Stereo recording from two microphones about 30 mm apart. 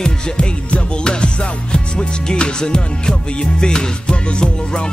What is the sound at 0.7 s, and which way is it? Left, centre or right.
Music, left.